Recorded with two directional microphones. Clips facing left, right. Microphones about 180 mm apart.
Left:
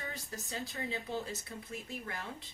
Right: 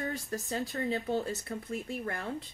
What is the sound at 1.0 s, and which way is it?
Speech, 60° right (ahead or behind).